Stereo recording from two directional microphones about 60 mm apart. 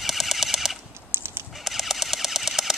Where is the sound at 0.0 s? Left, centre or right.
Centre.